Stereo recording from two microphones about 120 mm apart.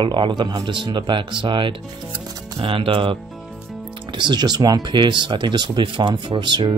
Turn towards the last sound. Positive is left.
turn(degrees=-40)  # may be behind; listen again after turning